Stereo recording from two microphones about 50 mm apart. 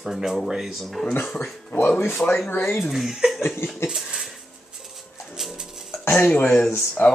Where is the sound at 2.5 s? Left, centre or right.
Left.